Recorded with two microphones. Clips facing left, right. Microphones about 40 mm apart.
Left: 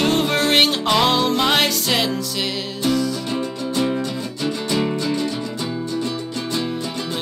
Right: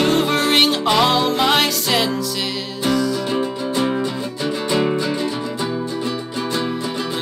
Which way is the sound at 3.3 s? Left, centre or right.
Centre.